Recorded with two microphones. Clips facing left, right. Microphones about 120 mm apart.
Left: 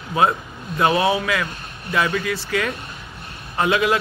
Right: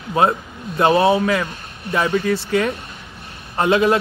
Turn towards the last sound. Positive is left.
turn(degrees=-30)  # may be behind; listen again after turning